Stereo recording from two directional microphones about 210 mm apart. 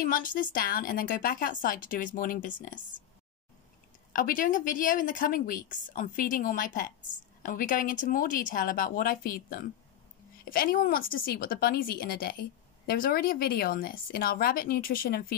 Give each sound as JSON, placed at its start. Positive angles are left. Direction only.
{"t": 0.0, "sound": "a woman's voice", "side_deg": 40}
{"t": 4.1, "sound": "a woman's voice", "side_deg": 40}